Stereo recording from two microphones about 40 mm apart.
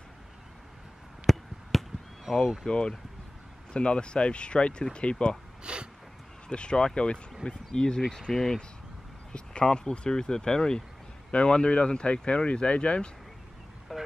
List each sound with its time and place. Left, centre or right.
1.2 s a sound: centre
2.3 s speech: centre
2.6 s speech: left
5.6 s a sound: right
6.5 s speech: left
8.1 s speech: centre
9.3 s speech: left
13.9 s vehicle: centre